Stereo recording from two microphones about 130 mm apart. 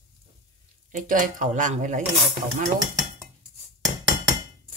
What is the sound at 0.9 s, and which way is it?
Speech, 90° right.